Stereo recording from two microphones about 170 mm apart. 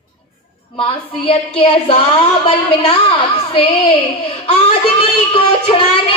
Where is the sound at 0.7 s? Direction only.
30° left (ahead or behind).